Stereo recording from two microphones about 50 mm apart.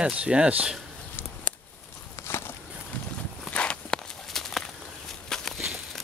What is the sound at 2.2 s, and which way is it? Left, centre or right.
Walk, left.